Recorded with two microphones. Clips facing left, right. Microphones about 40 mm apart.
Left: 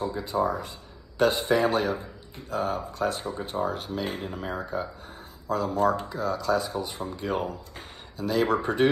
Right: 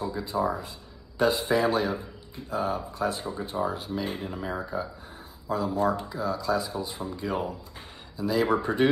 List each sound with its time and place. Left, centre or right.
0.2 s a man's voice: left